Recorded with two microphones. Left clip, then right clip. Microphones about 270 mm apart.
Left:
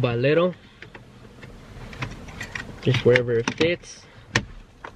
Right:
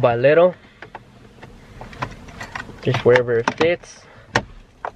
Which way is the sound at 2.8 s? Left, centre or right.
Centre.